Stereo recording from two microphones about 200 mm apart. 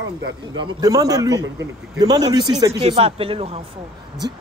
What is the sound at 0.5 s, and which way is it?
Speech, 20° right (ahead or behind).